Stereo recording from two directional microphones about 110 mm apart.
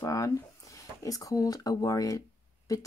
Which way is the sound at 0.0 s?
30° left (ahead or behind).